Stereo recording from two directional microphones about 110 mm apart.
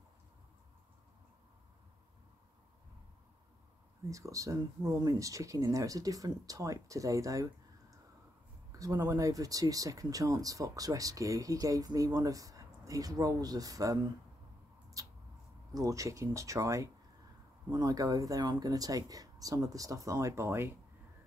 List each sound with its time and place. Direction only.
4.1 s speech: 30° right (ahead or behind)
8.7 s speech: 30° right (ahead or behind)
15.0 s mouse: 30° right (ahead or behind)
15.7 s speech: 30° right (ahead or behind)